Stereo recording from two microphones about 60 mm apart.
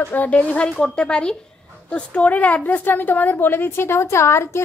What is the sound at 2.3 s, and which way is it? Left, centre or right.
A woman's voice, left.